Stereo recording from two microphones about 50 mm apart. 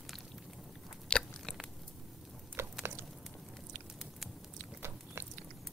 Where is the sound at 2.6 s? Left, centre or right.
Right.